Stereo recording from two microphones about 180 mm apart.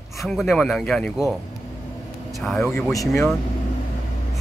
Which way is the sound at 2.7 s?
15° left (ahead or behind).